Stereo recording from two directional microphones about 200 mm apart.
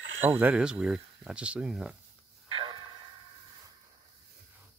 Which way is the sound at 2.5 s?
25° right (ahead or behind).